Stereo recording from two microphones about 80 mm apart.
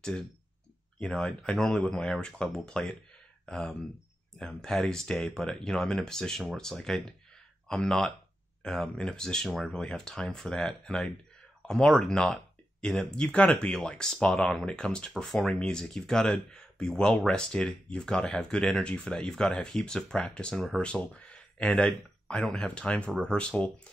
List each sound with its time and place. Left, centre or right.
0.9 s speech: centre
22.8 s speech: centre